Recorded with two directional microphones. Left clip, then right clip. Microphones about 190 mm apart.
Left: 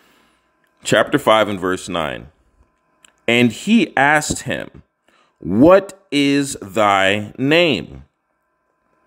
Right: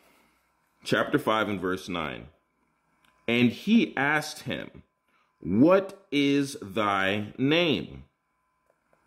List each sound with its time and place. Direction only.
0.7 s speech: 30° left (ahead or behind)